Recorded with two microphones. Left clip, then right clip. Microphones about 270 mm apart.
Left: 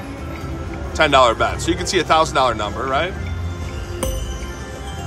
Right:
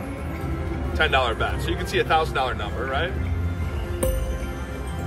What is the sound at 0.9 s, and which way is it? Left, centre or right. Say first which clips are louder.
Speech: left 8 dB; left.